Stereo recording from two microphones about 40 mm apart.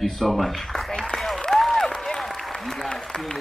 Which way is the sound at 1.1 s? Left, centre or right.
Centre.